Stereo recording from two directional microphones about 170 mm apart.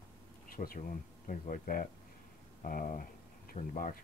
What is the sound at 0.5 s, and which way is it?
Speech, 55° left (ahead or behind).